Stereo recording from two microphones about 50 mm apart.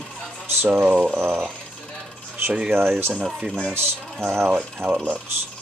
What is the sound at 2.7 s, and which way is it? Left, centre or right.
Speech, right.